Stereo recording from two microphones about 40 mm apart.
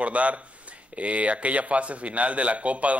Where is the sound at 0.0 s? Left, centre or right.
Right.